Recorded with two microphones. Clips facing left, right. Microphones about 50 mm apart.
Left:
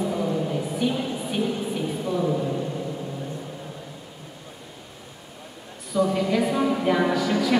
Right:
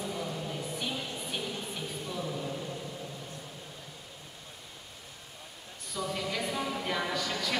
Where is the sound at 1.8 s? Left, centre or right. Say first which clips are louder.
Left 12 dB; left.